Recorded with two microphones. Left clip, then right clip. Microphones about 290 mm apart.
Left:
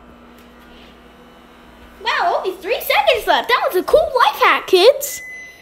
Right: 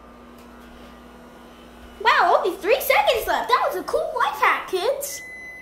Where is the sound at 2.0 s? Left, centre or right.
Centre.